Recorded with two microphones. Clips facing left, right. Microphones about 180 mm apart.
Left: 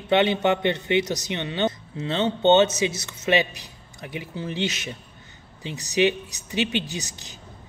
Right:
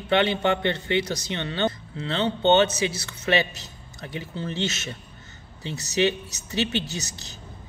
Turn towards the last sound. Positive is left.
turn(degrees=15)  # may be behind; listen again after turning